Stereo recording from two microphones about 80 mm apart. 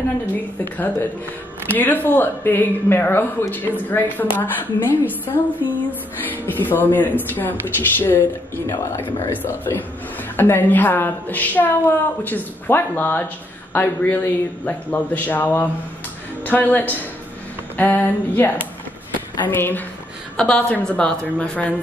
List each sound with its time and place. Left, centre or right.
1.7 s a woman's voice: left
9.0 s a woman's voice: left
20.3 s a woman's voice: centre